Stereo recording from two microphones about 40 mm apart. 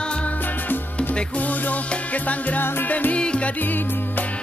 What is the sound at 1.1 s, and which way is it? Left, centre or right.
Music, left.